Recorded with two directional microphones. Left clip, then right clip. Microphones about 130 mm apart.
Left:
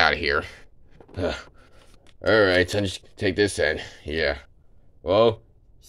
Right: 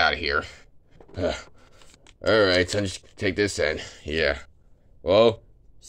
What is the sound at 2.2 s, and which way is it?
Speech, 10° left (ahead or behind).